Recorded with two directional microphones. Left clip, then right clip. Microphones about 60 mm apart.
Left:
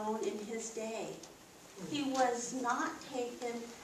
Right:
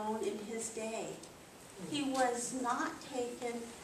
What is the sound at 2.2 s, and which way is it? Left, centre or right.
A child's voice, centre.